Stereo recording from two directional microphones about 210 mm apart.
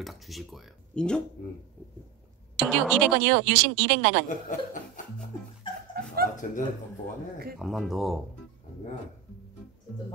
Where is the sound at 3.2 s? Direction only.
60° right (ahead or behind).